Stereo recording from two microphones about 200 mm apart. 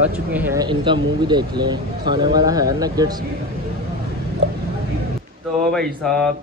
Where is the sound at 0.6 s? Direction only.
25° right (ahead or behind).